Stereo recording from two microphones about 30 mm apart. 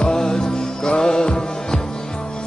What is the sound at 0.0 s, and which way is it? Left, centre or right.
Music, left.